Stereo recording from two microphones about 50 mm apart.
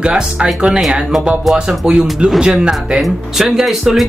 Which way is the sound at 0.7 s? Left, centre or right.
Centre.